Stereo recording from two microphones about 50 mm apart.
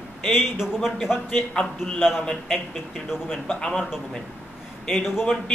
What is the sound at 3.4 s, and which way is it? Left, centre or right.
Speech, centre.